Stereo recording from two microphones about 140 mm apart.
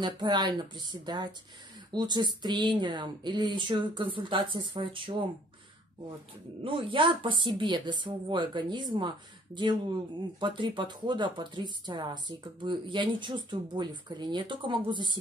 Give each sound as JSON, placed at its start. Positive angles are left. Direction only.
{"t": 0.0, "sound": "speech", "side_deg": -30}
{"t": 6.6, "sound": "speech", "side_deg": -40}